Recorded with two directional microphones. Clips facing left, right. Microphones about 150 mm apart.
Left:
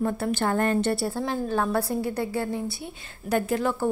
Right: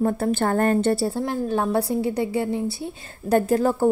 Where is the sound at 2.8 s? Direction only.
35° right (ahead or behind).